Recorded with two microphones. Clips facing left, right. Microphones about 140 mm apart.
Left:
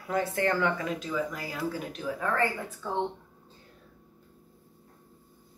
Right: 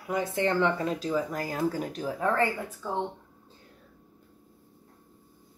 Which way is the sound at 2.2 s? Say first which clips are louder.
Right 3 dB; 15° right (ahead or behind).